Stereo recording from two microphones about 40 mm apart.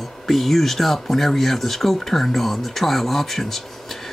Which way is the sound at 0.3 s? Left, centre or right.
Centre.